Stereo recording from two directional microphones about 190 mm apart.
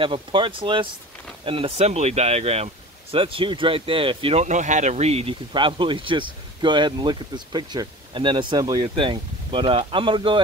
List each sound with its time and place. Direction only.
0.0 s speech: 25° right (ahead or behind)